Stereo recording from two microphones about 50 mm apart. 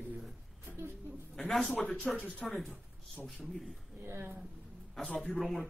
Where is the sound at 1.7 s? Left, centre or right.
Left.